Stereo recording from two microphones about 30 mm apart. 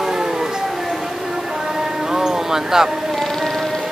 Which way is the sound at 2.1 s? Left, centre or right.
Centre.